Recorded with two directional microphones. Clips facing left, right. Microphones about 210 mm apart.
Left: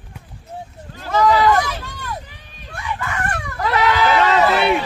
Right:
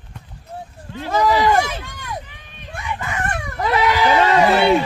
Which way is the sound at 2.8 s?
20° right (ahead or behind).